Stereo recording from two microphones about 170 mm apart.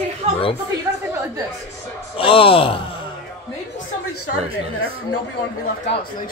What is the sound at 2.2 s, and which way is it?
Speech, 30° left (ahead or behind).